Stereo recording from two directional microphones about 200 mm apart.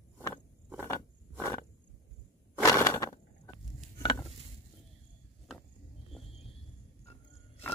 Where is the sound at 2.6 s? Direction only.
15° left (ahead or behind).